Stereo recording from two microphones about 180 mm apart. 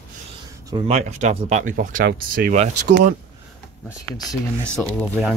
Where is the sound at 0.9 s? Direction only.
35° right (ahead or behind).